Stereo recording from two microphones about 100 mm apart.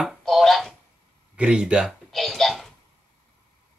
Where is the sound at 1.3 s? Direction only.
10° right (ahead or behind).